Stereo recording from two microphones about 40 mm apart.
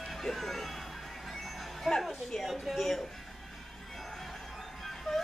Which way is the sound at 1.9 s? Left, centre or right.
Centre.